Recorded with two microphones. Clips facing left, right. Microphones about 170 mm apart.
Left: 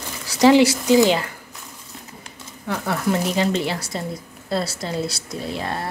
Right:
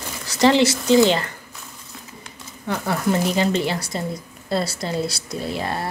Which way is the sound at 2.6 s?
Centre (ahead or behind).